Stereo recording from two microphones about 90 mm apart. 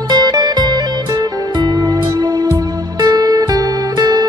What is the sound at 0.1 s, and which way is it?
Music, 50° right (ahead or behind).